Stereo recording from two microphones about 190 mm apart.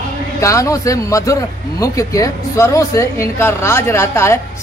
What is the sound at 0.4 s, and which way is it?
Speech, 15° left (ahead or behind).